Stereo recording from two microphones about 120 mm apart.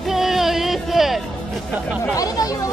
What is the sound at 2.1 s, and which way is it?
Speech, 30° left (ahead or behind).